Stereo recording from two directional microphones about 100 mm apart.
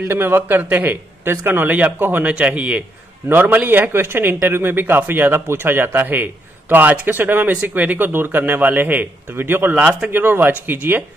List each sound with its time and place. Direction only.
0.1 s speech: 20° right (ahead or behind)